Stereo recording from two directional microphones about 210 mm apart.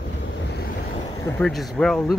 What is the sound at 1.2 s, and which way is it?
Speech, 5° left (ahead or behind).